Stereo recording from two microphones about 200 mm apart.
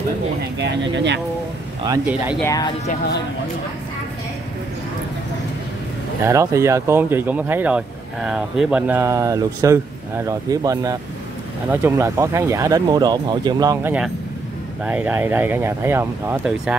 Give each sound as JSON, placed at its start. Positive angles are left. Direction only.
{"t": 0.6, "sound": "speech", "side_deg": -60}
{"t": 2.0, "sound": "speech", "side_deg": -5}
{"t": 2.4, "sound": "speech", "side_deg": 15}
{"t": 6.2, "sound": "speech", "side_deg": -15}
{"t": 14.9, "sound": "speech", "side_deg": -5}